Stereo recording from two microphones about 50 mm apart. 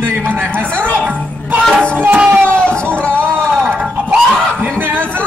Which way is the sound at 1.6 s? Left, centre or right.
Centre.